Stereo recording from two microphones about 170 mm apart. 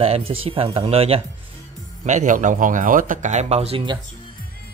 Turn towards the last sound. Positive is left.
turn(degrees=-35)  # may be behind; listen again after turning